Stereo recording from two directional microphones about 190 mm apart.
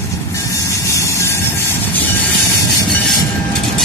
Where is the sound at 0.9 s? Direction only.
15° left (ahead or behind).